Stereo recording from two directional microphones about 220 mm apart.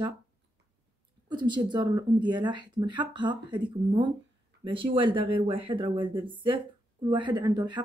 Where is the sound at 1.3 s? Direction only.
20° right (ahead or behind).